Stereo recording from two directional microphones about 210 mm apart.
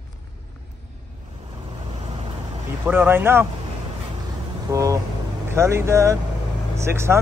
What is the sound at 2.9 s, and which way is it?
Speech, 10° right (ahead or behind).